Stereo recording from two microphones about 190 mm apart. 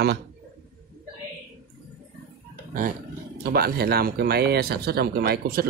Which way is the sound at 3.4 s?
55° right (ahead or behind).